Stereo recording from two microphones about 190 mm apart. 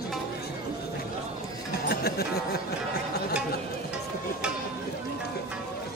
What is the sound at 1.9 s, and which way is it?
Music, 55° left (ahead or behind).